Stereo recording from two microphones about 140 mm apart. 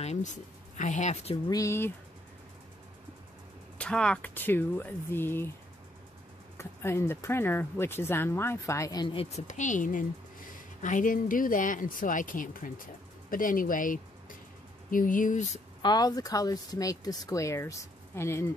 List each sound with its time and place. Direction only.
0.0 s speech: 55° left (ahead or behind)
1.3 s speech: 25° left (ahead or behind)
3.7 s speech: 5° left (ahead or behind)
6.6 s speech: 20° left (ahead or behind)
9.1 s a woman's voice: 45° left (ahead or behind)
9.5 s a woman's voice: 60° left (ahead or behind)
15.8 s speech: 30° left (ahead or behind)